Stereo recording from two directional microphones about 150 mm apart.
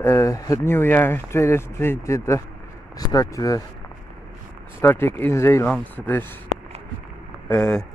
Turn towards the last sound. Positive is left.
turn(degrees=10)  # may be behind; listen again after turning